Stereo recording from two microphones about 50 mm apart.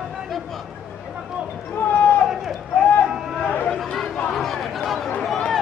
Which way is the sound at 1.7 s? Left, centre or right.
Left.